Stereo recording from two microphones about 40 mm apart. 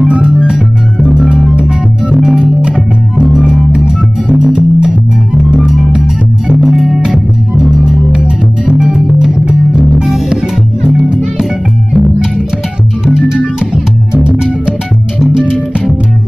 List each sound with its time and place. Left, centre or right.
0.0 s music: right
5.9 s music: centre
13.0 s music: centre
15.1 s music: centre